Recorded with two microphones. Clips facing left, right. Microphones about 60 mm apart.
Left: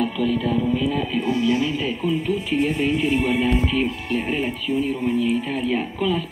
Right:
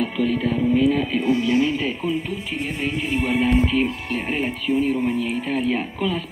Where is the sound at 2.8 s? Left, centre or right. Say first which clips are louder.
Left 3 dB; centre.